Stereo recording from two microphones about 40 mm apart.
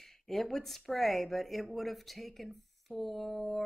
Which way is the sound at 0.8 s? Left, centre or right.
Centre.